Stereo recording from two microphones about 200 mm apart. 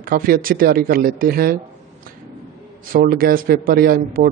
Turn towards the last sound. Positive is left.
turn(degrees=-45)  # may be behind; listen again after turning